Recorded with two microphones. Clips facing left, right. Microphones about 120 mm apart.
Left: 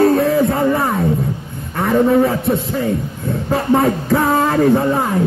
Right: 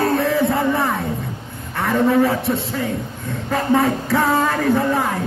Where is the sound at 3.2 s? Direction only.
35° left (ahead or behind).